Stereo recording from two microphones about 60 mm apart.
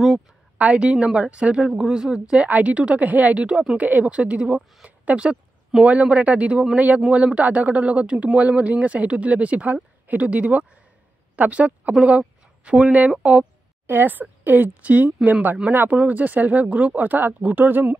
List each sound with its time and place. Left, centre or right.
0.6 s a woman's voice: centre